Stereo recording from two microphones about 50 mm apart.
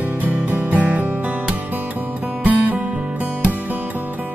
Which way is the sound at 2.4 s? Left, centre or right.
Right.